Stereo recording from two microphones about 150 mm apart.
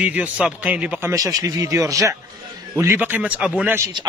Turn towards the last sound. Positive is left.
turn(degrees=-15)  # may be behind; listen again after turning